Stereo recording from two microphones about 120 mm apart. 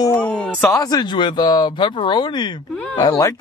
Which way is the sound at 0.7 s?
35° left (ahead or behind).